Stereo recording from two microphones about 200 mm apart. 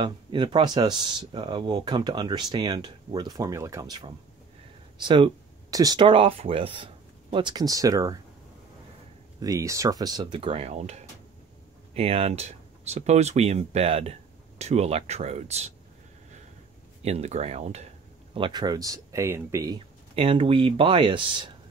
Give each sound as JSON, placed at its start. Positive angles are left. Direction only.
{"t": 0.0, "sound": "speech", "side_deg": -25}
{"t": 9.4, "sound": "speech", "side_deg": -15}
{"t": 17.0, "sound": "speech", "side_deg": -35}
{"t": 18.3, "sound": "speech", "side_deg": -25}